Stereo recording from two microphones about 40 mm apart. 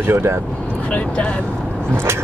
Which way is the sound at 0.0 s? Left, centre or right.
Right.